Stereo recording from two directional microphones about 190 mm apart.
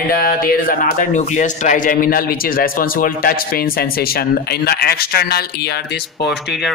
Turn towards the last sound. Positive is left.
turn(degrees=60)  # may be behind; listen again after turning